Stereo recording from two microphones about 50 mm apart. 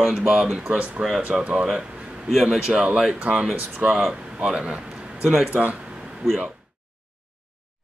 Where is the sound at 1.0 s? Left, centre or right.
Right.